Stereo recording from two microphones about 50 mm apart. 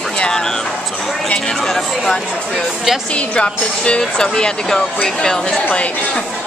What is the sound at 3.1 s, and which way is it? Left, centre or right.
Speech, left.